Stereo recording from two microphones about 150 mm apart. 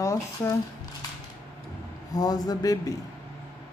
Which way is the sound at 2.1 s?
25° left (ahead or behind).